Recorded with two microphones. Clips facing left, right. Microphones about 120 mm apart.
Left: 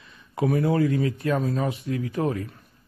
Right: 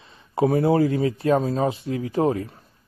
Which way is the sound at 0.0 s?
30° right (ahead or behind).